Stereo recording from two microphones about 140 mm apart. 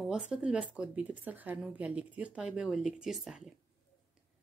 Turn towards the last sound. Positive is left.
turn(degrees=-5)  # may be behind; listen again after turning